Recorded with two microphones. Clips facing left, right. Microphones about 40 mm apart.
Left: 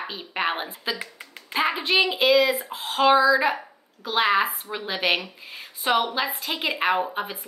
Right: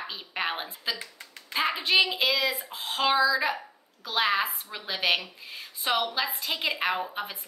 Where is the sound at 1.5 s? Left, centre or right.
Centre.